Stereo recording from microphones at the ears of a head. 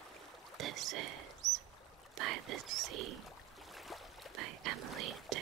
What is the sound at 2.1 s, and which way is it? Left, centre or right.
Speech, right.